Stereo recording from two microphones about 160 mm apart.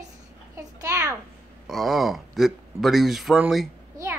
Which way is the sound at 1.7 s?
Centre (ahead or behind).